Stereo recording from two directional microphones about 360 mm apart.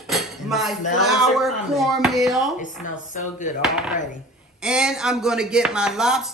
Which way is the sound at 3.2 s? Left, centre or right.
Left.